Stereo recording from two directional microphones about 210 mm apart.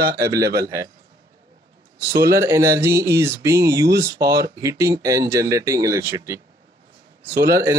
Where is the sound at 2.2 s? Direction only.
15° right (ahead or behind).